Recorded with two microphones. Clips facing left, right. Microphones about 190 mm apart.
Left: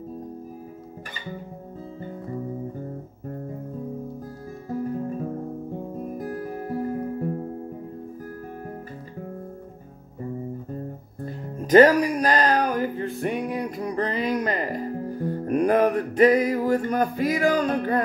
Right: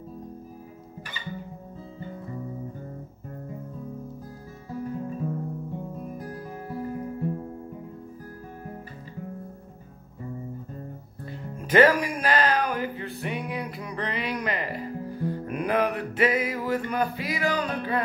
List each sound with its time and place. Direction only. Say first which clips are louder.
6.1 s music: left 6 dB; 40° left (ahead or behind)
11.2 s music: left 6 dB; 40° left (ahead or behind)